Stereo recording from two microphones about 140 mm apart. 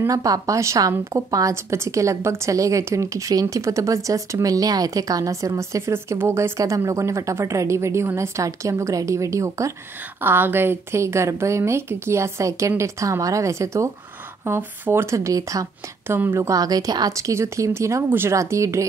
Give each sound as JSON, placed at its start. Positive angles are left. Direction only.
{"t": 0.0, "sound": "a woman's voice", "side_deg": -25}